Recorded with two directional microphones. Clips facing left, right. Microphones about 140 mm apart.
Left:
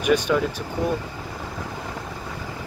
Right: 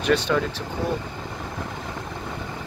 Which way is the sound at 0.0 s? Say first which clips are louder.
Left 1 dB; 10° left (ahead or behind).